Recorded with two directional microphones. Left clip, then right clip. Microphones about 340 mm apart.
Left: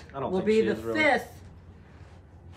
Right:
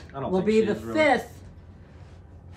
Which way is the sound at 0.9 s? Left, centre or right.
Centre.